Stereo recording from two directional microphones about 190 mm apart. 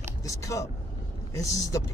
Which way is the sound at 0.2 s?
15° left (ahead or behind).